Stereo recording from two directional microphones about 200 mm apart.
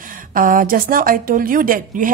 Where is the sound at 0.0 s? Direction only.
45° right (ahead or behind).